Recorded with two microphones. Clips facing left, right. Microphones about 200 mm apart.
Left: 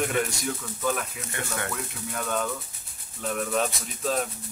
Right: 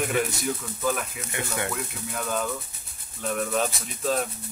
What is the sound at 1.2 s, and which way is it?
Speech, 15° right (ahead or behind).